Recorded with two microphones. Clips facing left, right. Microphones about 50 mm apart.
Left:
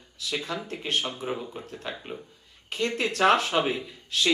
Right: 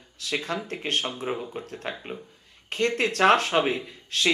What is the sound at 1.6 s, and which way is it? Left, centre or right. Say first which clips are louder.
Speech: right 2 dB; right.